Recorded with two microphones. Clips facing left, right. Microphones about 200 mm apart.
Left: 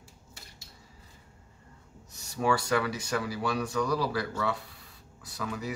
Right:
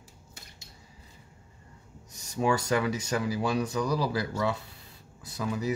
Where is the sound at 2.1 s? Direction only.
20° right (ahead or behind).